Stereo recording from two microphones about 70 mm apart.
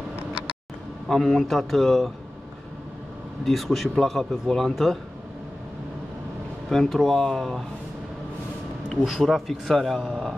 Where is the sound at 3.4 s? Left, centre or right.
Centre.